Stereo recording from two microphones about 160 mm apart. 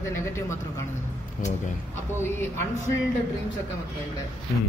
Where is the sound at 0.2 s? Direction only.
15° left (ahead or behind).